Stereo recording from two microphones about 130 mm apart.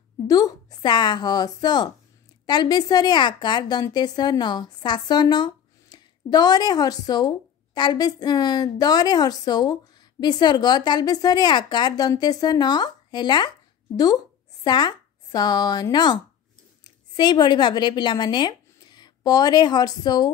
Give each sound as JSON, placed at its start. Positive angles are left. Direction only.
{"t": 0.3, "sound": "a woman's voice", "side_deg": 30}
{"t": 14.6, "sound": "speech", "side_deg": 35}